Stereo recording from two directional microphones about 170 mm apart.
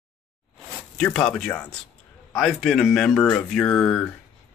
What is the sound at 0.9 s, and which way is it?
Speech, 5° left (ahead or behind).